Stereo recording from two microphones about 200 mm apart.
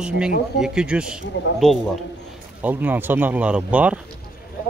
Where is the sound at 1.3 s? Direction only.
60° left (ahead or behind).